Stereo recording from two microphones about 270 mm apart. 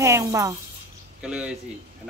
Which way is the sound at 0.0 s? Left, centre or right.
Centre.